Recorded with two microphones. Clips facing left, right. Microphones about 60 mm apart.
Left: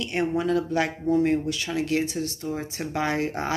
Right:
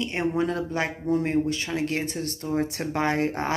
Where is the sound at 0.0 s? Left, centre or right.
Right.